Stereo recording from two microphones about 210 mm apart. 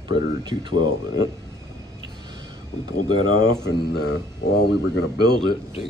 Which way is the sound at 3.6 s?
50° left (ahead or behind).